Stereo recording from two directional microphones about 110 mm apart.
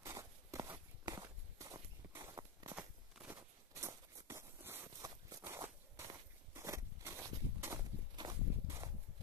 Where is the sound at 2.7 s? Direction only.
15° right (ahead or behind).